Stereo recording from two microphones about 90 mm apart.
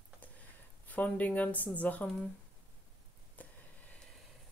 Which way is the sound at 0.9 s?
20° left (ahead or behind).